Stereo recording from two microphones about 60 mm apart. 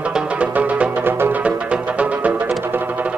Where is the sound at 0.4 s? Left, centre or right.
Right.